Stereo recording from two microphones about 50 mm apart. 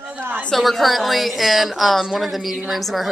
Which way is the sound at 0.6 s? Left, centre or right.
Centre.